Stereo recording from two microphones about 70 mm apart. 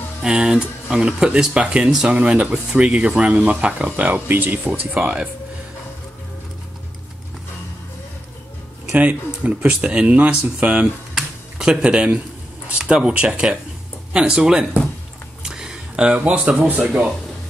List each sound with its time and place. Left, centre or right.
0.2 s speech: centre
8.9 s speech: right
11.1 s a sound: centre
12.6 s speech: centre